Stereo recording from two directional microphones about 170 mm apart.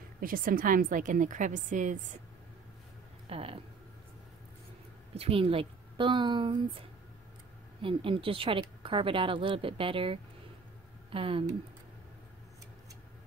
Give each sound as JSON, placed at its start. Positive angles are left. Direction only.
{"t": 0.2, "sound": "a woman's voice", "side_deg": -55}
{"t": 3.3, "sound": "a sound", "side_deg": -35}
{"t": 5.1, "sound": "speech", "side_deg": -35}